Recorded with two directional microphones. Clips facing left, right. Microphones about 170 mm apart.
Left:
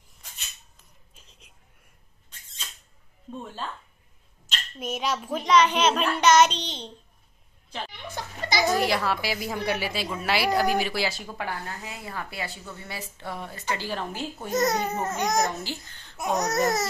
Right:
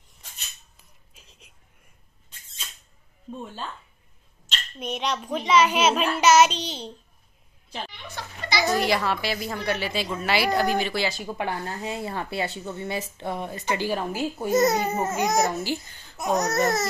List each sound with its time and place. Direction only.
1.1 s a sound: centre (ahead or behind)
4.5 s a woman's voice: centre (ahead or behind)
8.2 s a sound: 45° left (ahead or behind)
8.6 s a woman's voice: centre (ahead or behind)
11.2 s speech: 20° right (ahead or behind)
16.3 s speech: 10° left (ahead or behind)